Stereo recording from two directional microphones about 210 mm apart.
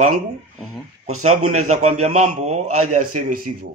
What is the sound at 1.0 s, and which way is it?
Speech, 90° right.